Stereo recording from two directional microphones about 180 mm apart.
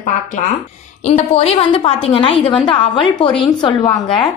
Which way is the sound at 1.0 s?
35° left (ahead or behind).